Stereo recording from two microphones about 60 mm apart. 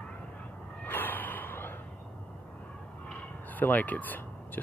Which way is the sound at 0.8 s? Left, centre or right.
Left.